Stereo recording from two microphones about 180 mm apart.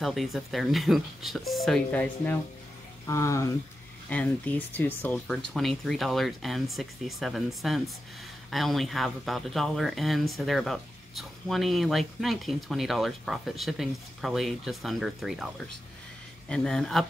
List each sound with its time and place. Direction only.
0.0 s speech: centre (ahead or behind)
3.1 s speech: 15° left (ahead or behind)